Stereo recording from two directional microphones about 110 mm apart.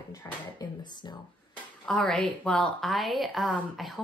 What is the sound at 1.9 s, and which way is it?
A woman's voice, 10° left (ahead or behind).